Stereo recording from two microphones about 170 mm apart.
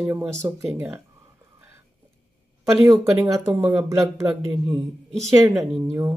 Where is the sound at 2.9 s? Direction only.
20° right (ahead or behind).